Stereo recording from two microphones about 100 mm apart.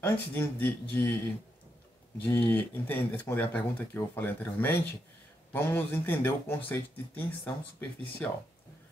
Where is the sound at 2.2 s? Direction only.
20° left (ahead or behind).